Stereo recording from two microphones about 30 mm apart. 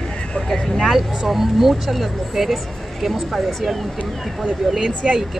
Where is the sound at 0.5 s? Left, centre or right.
Centre.